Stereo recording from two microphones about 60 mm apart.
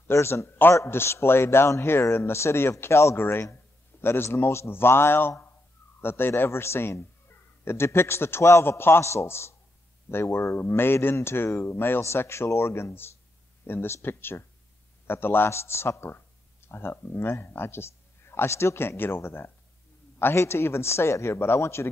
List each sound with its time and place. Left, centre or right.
0.1 s a man's voice: left